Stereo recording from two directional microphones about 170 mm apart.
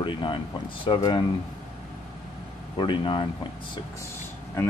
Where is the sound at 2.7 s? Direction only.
30° left (ahead or behind).